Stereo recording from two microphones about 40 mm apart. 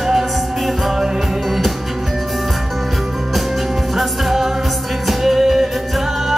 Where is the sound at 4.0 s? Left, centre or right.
Centre.